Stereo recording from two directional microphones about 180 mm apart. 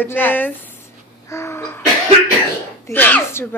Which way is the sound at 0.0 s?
10° left (ahead or behind).